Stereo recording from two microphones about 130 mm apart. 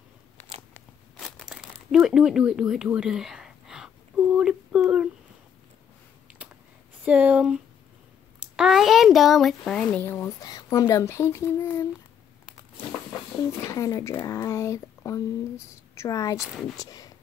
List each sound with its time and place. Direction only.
0.7 s scissors: 10° left (ahead or behind)
1.4 s crumpling: 5° right (ahead or behind)
6.2 s a sound: 10° right (ahead or behind)
7.0 s a child's voice: 10° right (ahead or behind)
10.0 s speech: 20° left (ahead or behind)
13.7 s speech: 25° left (ahead or behind)